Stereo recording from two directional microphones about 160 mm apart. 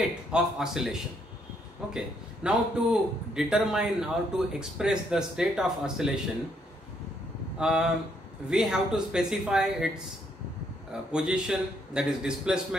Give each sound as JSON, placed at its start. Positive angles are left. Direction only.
{"t": 0.3, "sound": "a man's voice", "side_deg": -5}
{"t": 7.5, "sound": "a man's voice", "side_deg": -5}
{"t": 10.9, "sound": "a man's voice", "side_deg": -5}